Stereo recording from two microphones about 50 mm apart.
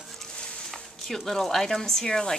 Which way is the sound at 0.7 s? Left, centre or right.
Centre.